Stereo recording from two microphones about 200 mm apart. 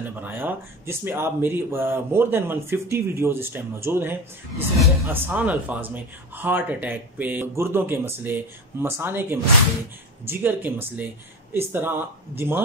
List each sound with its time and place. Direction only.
0.0 s speech: 10° right (ahead or behind)